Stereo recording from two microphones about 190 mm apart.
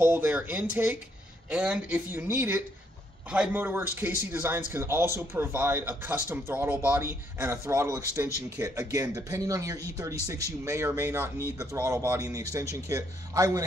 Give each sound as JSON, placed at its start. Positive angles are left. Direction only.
{"t": 0.0, "sound": "a man's voice", "side_deg": -10}